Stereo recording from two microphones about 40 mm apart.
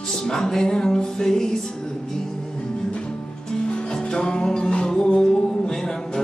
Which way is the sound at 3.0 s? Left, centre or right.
Left.